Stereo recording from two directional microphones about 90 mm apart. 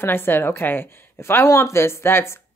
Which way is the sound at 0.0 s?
25° left (ahead or behind).